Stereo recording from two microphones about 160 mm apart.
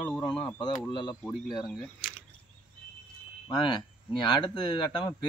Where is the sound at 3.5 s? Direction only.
30° left (ahead or behind).